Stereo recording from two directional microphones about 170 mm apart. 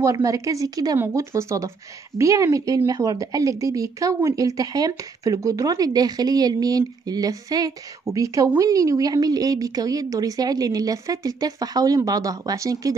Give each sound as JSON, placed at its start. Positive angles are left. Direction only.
{"t": 0.0, "sound": "a woman's voice", "side_deg": -20}